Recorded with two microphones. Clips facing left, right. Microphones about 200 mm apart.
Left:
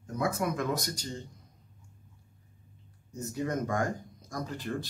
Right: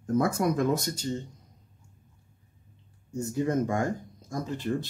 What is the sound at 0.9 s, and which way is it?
Speech, 25° right (ahead or behind).